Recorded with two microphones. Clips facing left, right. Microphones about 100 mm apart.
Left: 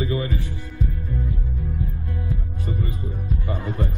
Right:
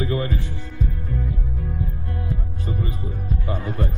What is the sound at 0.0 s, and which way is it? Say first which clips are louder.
Speech: right 1 dB; 55° right (ahead or behind).